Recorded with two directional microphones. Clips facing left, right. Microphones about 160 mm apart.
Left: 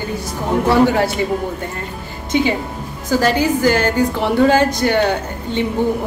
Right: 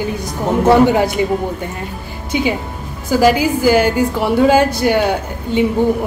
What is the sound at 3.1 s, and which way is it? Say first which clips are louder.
A woman's voice: right 3 dB; 10° right (ahead or behind).